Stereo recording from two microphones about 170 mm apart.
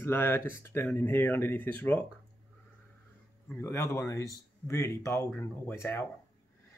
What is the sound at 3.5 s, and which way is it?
Speech, 15° left (ahead or behind).